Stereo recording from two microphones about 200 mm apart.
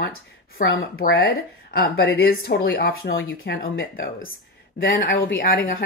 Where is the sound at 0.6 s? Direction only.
50° left (ahead or behind).